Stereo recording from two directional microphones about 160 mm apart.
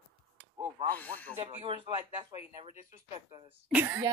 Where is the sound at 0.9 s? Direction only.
10° left (ahead or behind).